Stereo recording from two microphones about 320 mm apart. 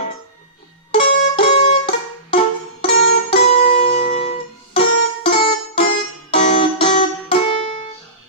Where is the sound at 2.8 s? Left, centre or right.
Left.